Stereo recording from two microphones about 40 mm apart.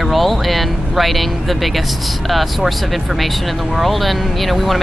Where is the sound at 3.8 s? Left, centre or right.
Centre.